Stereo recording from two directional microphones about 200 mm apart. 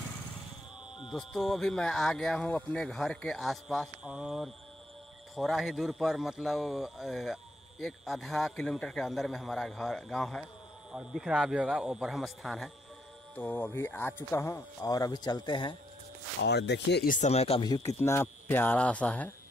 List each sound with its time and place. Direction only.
1.0 s speech: centre (ahead or behind); by 15.8 s 25° left (ahead or behind)
16.4 s speech: 55° left (ahead or behind); by 19.3 s 5° left (ahead or behind)